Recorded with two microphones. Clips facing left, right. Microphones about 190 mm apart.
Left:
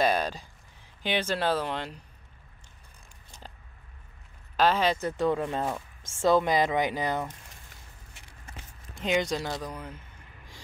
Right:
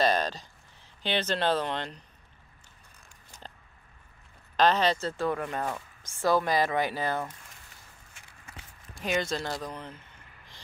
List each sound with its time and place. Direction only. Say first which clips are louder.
0.0 s a sound: even; 10° left (ahead or behind)
1.0 s speech: even; 10° left (ahead or behind)
4.6 s speech: even; 10° left (ahead or behind)
8.9 s speech: left 2 dB; 20° left (ahead or behind)
9.4 s speech: left 1 dB; 5° left (ahead or behind)